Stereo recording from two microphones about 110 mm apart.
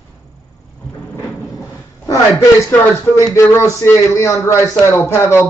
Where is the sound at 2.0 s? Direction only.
25° left (ahead or behind).